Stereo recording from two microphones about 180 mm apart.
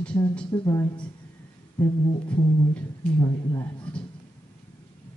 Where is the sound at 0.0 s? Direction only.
5° left (ahead or behind).